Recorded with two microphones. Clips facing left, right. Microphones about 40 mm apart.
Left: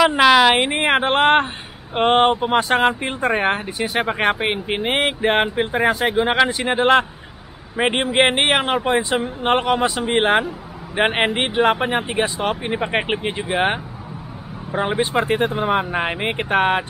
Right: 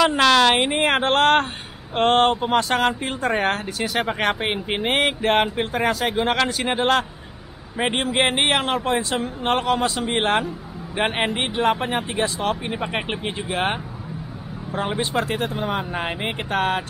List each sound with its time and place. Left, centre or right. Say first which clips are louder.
0.0 s speech: left 3 dB; centre